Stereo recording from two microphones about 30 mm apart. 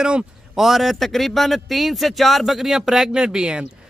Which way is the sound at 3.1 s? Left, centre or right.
Right.